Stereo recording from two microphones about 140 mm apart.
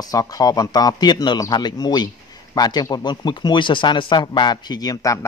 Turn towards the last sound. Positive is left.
turn(degrees=25)  # may be behind; listen again after turning